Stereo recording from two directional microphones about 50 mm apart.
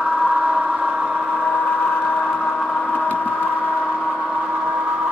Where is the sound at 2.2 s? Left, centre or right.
Centre.